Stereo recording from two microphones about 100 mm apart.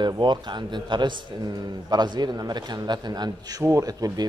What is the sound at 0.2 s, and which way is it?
Speech, 50° right (ahead or behind).